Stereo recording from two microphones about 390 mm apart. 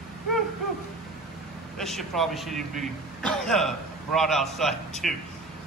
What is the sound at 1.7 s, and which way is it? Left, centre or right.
A man's voice, centre.